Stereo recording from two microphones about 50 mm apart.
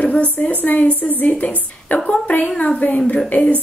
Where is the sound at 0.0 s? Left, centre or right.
Left.